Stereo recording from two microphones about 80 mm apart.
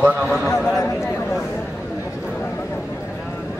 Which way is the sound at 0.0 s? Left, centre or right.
Centre.